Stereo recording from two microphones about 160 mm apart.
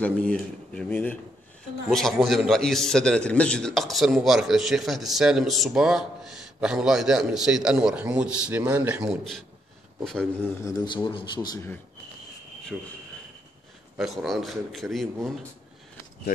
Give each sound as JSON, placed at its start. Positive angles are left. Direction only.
{"t": 0.0, "sound": "a man's voice", "side_deg": 10}
{"t": 10.0, "sound": "a man's voice", "side_deg": 5}
{"t": 10.6, "sound": "a man's voice", "side_deg": 25}
{"t": 12.7, "sound": "a man's voice", "side_deg": -5}
{"t": 13.9, "sound": "a man's voice", "side_deg": 0}